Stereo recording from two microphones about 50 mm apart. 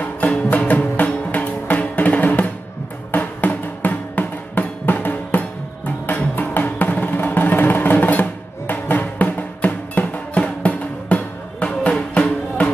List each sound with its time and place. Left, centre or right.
0.3 s music: left